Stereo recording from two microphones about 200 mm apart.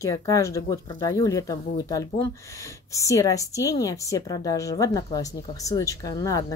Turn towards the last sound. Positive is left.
turn(degrees=15)  # may be behind; listen again after turning